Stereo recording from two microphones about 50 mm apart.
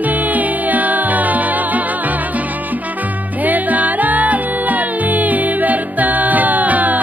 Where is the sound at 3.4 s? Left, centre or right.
Right.